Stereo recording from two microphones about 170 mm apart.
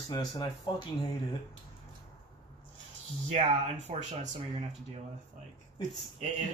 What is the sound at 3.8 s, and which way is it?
Speech, 40° right (ahead or behind).